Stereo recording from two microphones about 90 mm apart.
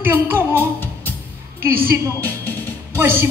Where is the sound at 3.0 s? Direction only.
25° right (ahead or behind).